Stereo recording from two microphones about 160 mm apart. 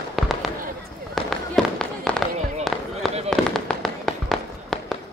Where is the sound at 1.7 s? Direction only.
5° left (ahead or behind).